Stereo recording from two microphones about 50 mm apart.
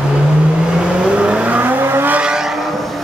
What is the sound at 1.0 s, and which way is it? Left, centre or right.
Vehicle, right.